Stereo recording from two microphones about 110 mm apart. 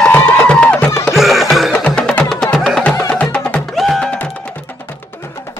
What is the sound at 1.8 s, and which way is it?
Music, 10° left (ahead or behind).